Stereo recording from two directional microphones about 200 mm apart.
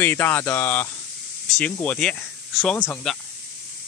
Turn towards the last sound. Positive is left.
turn(degrees=5)  # may be behind; listen again after turning